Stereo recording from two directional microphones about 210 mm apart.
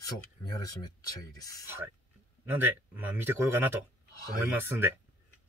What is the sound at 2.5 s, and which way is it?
Speech, 10° right (ahead or behind).